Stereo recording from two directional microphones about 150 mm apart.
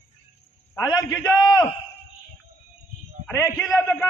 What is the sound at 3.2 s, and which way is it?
Speech, 20° left (ahead or behind).